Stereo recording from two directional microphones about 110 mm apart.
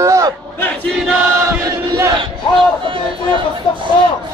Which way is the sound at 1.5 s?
25° right (ahead or behind).